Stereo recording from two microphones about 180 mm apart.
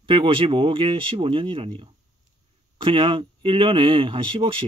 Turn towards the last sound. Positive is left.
turn(degrees=-30)  # may be behind; listen again after turning